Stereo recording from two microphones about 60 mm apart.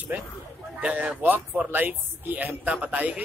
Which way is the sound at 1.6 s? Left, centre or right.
Right.